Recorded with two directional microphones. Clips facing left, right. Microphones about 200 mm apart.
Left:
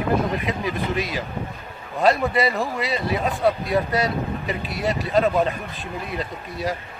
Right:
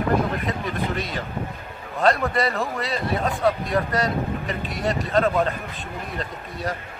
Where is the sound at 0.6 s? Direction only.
5° left (ahead or behind).